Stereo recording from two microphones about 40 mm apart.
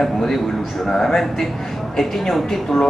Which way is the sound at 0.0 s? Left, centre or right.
Centre.